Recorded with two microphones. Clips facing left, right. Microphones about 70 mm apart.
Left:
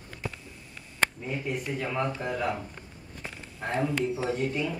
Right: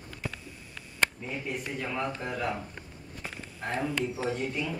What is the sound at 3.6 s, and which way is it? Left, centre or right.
A man's voice, centre.